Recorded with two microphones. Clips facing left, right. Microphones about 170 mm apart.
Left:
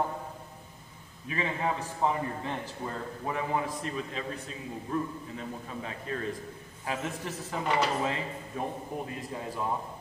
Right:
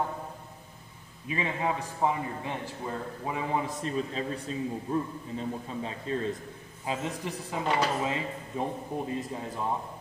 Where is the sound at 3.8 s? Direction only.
35° right (ahead or behind); by 7.6 s 20° right (ahead or behind).